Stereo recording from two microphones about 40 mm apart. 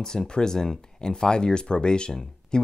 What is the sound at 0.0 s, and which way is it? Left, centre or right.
Speech, centre.